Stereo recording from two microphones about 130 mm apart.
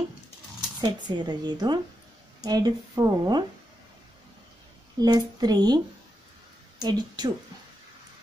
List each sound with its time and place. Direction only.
0.6 s speech: 35° right (ahead or behind)
5.0 s speech: 30° right (ahead or behind)
6.8 s speech: 30° right (ahead or behind)